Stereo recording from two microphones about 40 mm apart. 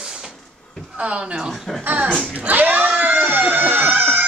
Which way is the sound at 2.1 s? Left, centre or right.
Left.